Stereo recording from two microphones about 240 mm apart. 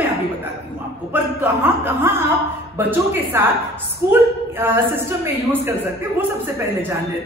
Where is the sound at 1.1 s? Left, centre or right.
Centre.